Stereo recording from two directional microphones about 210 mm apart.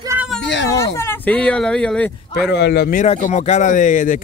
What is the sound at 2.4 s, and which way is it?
Speech, 50° left (ahead or behind).